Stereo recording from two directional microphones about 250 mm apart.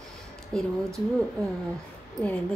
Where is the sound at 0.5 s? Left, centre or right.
Centre.